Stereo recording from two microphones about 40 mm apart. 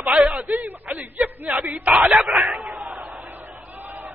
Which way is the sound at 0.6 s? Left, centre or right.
Right.